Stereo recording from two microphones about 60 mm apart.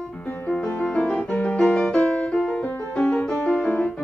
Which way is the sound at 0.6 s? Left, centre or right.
Centre.